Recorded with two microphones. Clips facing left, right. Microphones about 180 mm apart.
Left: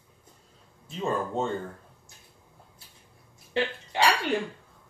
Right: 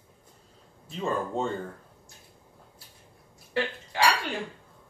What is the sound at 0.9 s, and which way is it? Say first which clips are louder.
Speech: left 1 dB; centre (ahead or behind).